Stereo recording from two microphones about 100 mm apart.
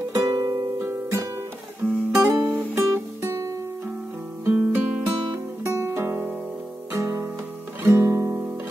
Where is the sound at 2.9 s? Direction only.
35° right (ahead or behind).